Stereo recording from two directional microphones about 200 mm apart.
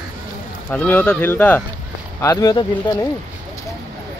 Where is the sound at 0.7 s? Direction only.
10° left (ahead or behind).